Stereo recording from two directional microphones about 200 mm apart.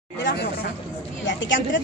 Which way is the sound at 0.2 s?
55° left (ahead or behind).